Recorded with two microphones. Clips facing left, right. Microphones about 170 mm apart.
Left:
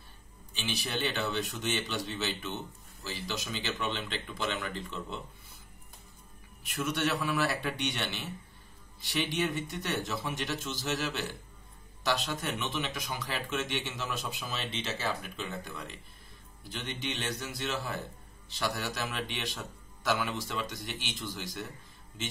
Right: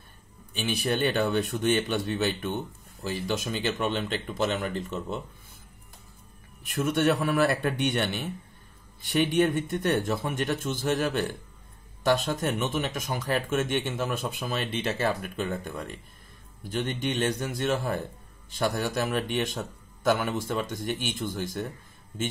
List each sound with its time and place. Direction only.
0.6 s a man's voice: 55° right (ahead or behind)
6.7 s a man's voice: 50° right (ahead or behind)